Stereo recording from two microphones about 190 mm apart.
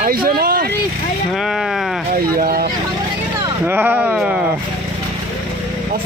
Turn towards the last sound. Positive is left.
turn(degrees=-5)  # may be behind; listen again after turning